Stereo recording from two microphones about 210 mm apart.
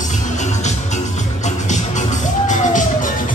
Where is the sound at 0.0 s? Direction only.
35° left (ahead or behind).